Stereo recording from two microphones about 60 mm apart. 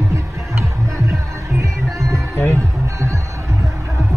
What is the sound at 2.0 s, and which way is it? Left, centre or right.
Music, right.